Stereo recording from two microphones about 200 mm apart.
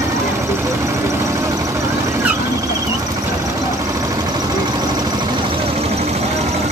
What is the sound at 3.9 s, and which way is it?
Vehicle, 15° right (ahead or behind).